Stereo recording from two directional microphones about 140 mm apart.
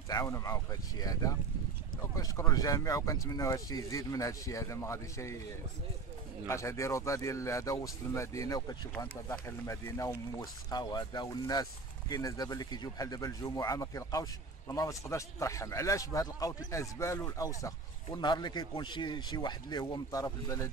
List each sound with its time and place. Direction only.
0.1 s speech: 25° left (ahead or behind)
6.4 s speech: 20° left (ahead or behind)